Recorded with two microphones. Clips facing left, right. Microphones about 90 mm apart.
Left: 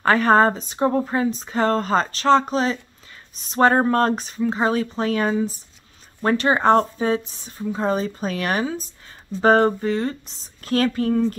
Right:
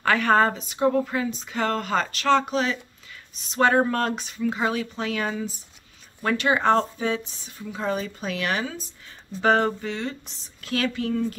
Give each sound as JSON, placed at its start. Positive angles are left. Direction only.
{"t": 0.0, "sound": "speech", "side_deg": 35}